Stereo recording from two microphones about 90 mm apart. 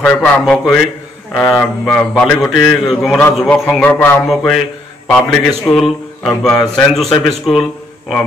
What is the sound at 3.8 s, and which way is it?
Speech, 25° left (ahead or behind).